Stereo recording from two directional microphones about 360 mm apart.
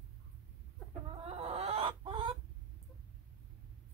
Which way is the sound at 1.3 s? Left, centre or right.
Centre.